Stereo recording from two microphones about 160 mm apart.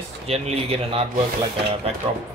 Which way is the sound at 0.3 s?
40° right (ahead or behind).